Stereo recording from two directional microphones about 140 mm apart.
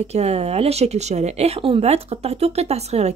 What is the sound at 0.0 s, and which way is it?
Speech, 50° right (ahead or behind).